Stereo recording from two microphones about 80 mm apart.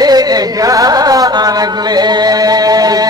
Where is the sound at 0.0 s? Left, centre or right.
Right.